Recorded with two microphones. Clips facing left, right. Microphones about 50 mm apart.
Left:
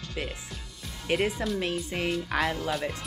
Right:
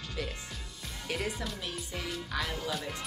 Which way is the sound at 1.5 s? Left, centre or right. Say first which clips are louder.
Left 9 dB; left.